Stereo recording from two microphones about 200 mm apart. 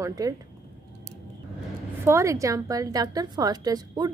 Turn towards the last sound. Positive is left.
turn(degrees=-20)  # may be behind; listen again after turning